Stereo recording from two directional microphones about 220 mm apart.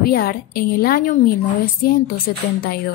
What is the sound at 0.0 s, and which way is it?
A woman's voice, 45° left (ahead or behind).